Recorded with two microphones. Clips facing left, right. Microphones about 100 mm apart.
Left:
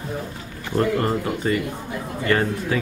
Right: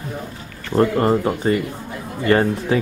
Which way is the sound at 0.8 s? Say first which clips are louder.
Right 5 dB; 30° right (ahead or behind).